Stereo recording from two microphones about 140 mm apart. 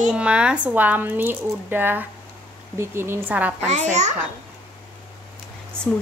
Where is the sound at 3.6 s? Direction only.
55° right (ahead or behind).